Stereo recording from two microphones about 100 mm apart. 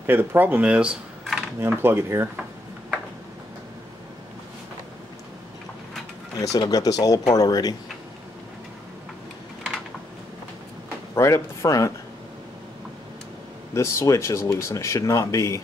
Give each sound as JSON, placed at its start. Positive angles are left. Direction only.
{"t": 0.0, "sound": "speech", "side_deg": -20}
{"t": 1.6, "sound": "speech", "side_deg": -20}
{"t": 6.3, "sound": "speech", "side_deg": 40}
{"t": 11.1, "sound": "speech", "side_deg": 30}
{"t": 13.7, "sound": "speech", "side_deg": 30}